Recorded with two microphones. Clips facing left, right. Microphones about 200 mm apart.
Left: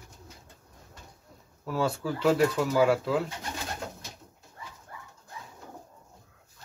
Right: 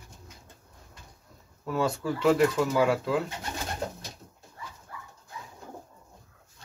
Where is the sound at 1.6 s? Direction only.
Centre (ahead or behind).